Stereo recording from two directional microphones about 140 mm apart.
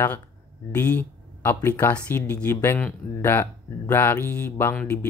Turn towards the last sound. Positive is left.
turn(degrees=15)  # may be behind; listen again after turning